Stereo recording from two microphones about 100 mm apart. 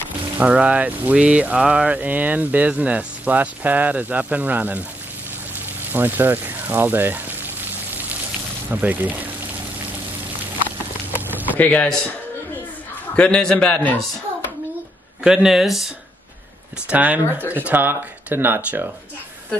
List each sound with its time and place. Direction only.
0.4 s speech: 15° right (ahead or behind)
5.9 s pour: 20° right (ahead or behind)
8.6 s speech: 15° right (ahead or behind)
11.1 s a sound: 20° right (ahead or behind)
11.5 s speech: 15° left (ahead or behind)
15.2 s speech: 5° right (ahead or behind)
16.9 s speech: 15° right (ahead or behind)